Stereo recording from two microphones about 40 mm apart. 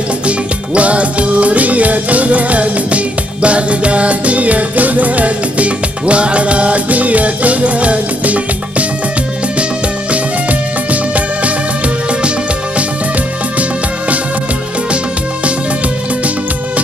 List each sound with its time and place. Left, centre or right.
0.3 s music: right
10.1 s music: right
13.6 s music: right